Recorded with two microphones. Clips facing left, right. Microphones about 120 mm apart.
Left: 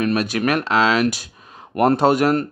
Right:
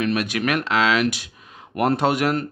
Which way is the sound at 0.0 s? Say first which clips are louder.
Left 3 dB; 35° left (ahead or behind).